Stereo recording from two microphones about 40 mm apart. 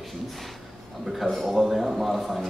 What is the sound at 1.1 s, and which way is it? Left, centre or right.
A man's voice, centre.